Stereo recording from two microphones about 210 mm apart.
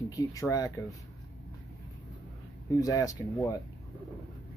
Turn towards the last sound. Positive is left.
turn(degrees=15)  # may be behind; listen again after turning